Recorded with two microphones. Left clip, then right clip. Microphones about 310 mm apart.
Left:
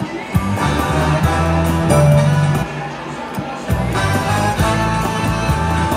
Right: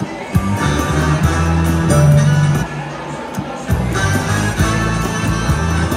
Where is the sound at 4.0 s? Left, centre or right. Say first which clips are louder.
Left 1 dB; centre.